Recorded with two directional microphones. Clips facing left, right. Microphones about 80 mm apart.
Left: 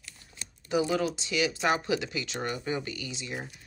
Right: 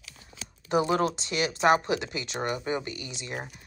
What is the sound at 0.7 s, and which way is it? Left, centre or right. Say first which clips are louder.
Speech: right 3 dB; right.